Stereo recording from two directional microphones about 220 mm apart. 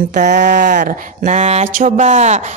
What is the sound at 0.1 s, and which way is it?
A woman's voice, 35° right (ahead or behind).